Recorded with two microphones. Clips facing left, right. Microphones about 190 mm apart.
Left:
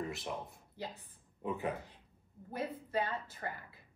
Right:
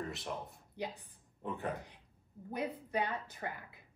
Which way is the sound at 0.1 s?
Centre (ahead or behind).